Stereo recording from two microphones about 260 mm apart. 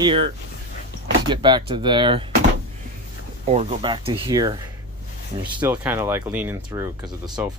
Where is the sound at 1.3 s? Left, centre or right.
Centre.